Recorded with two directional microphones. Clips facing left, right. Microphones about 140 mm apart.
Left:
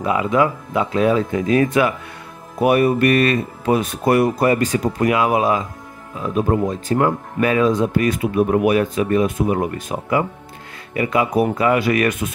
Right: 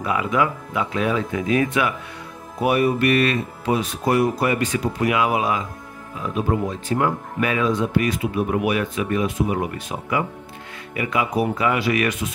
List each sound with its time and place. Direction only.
0.0 s speech: 25° left (ahead or behind)
2.6 s speech: 55° left (ahead or behind)
4.4 s speech: 40° left (ahead or behind)